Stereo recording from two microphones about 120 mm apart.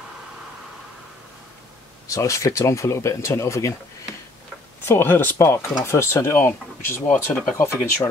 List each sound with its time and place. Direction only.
2.0 s speech: 25° left (ahead or behind)
4.8 s speech: 20° left (ahead or behind)